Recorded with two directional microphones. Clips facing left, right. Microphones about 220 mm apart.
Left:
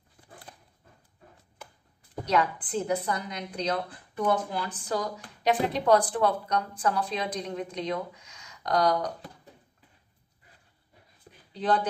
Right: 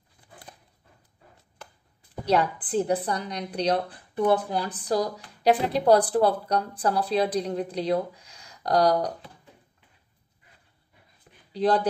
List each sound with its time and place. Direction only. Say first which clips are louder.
2.2 s a woman's voice: right 3 dB; 35° right (ahead or behind)
11.5 s a woman's voice: right 4 dB; 35° right (ahead or behind)